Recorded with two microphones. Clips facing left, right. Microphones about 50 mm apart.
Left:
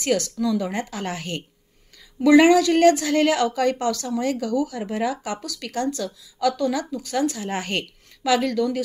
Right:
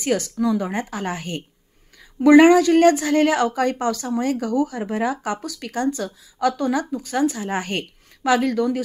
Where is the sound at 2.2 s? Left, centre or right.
Right.